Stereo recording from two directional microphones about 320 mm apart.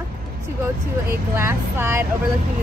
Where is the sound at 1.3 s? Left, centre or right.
Centre.